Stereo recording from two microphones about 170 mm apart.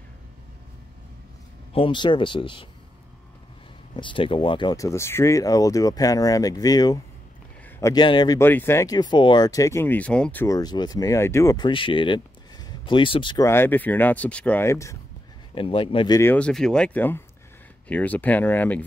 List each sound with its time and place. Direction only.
1.7 s speech: 30° left (ahead or behind)
3.9 s speech: 30° left (ahead or behind)
8.4 s speech: 15° left (ahead or behind)
10.4 s speech: 20° left (ahead or behind)
13.5 s speech: 10° left (ahead or behind)
15.5 s a man's voice: 30° left (ahead or behind)
16.2 s speech: 10° left (ahead or behind)